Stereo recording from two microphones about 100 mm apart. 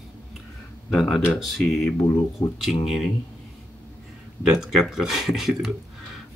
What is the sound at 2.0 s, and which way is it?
Speech, 30° left (ahead or behind).